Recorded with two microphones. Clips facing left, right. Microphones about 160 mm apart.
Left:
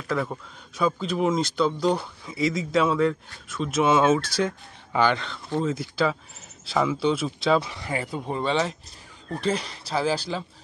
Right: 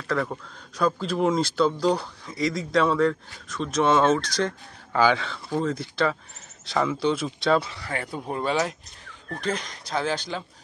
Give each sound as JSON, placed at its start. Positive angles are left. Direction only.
{"t": 0.1, "sound": "speech", "side_deg": 5}
{"t": 7.7, "sound": "speech", "side_deg": 20}
{"t": 8.0, "sound": "speech", "side_deg": 0}
{"t": 9.8, "sound": "speech", "side_deg": 5}